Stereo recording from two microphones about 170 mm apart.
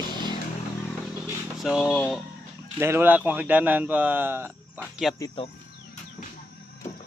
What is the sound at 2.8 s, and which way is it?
A man's voice, 15° right (ahead or behind).